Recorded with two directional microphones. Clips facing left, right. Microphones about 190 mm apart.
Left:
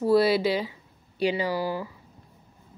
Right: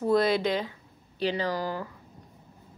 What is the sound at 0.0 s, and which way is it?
Speech, 5° left (ahead or behind).